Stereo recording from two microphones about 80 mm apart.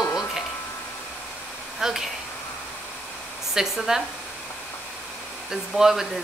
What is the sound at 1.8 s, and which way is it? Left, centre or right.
Speech, centre.